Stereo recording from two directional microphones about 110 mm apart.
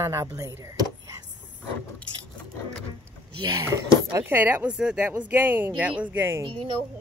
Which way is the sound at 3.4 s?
35° right (ahead or behind).